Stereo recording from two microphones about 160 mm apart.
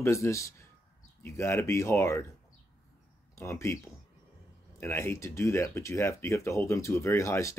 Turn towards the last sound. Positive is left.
turn(degrees=20)  # may be behind; listen again after turning